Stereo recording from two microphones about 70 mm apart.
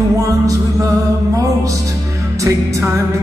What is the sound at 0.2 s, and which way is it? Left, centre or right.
Music, right.